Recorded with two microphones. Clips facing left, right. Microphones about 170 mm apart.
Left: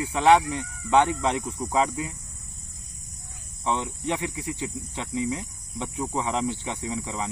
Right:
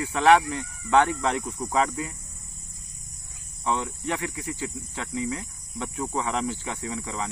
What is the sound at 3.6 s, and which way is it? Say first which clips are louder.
Speech: even; 20° left (ahead or behind).